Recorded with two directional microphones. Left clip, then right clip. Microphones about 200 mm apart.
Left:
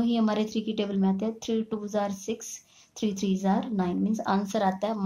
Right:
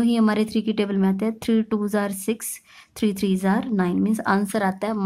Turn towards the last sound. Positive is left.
turn(degrees=-30)  # may be behind; listen again after turning